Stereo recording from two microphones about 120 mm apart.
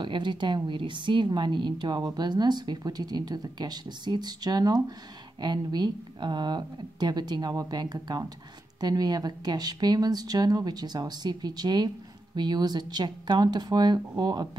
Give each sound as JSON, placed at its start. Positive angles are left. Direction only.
{"t": 0.0, "sound": "speech", "side_deg": -40}